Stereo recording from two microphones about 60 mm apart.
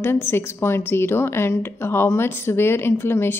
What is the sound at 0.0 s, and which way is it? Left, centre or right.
A woman's voice, left.